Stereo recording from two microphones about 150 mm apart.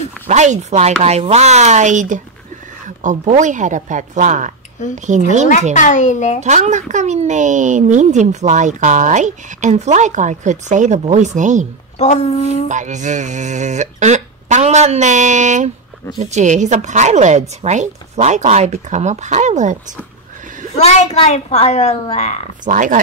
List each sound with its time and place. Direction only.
0.3 s speech: 50° right (ahead or behind)
5.8 s a child's voice: 55° left (ahead or behind)
6.4 s speech: 50° right (ahead or behind)
12.0 s a child's voice: 45° left (ahead or behind)
12.6 s speech: 55° right (ahead or behind)
20.7 s a child's voice: 45° left (ahead or behind)
22.7 s speech: 60° right (ahead or behind)